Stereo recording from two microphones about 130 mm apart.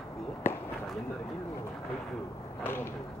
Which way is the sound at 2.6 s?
15° left (ahead or behind).